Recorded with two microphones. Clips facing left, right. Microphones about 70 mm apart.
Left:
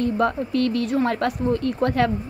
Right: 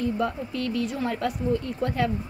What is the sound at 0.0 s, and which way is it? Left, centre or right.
A woman's voice, left.